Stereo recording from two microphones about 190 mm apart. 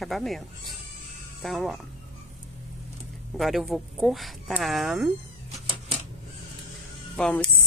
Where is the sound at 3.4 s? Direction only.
Centre (ahead or behind).